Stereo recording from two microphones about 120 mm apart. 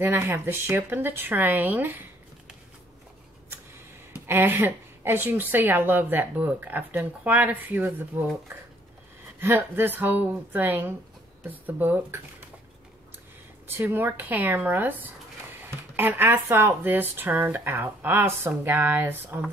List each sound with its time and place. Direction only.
0.0 s speech: 15° right (ahead or behind)
4.3 s speech: 15° right (ahead or behind)
9.4 s speech: 20° right (ahead or behind)
13.7 s speech: 20° right (ahead or behind)